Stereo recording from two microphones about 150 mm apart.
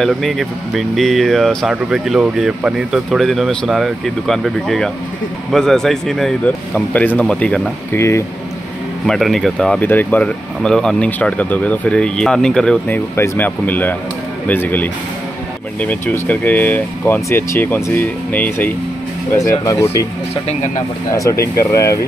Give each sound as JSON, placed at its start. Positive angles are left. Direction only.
{"t": 0.0, "sound": "speech", "side_deg": 0}
{"t": 9.0, "sound": "speech", "side_deg": 0}
{"t": 20.4, "sound": "speech", "side_deg": 55}
{"t": 21.1, "sound": "speech", "side_deg": 20}